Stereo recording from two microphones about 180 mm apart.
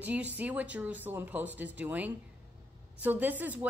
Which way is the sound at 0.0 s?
10° right (ahead or behind).